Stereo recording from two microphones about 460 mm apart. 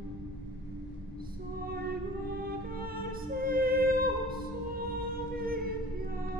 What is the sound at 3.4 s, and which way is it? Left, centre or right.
Music, centre.